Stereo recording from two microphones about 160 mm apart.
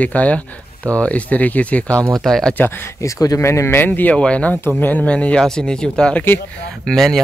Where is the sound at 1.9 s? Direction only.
20° right (ahead or behind).